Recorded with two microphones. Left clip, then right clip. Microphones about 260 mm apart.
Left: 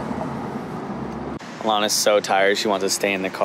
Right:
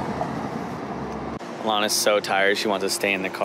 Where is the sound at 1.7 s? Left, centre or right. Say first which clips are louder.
Left 3 dB; centre.